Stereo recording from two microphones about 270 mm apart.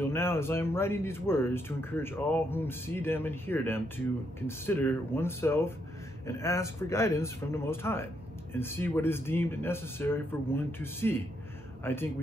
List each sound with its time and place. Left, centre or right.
0.0 s speech: centre